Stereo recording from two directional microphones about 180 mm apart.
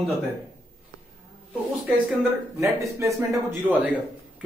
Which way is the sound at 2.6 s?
15° right (ahead or behind).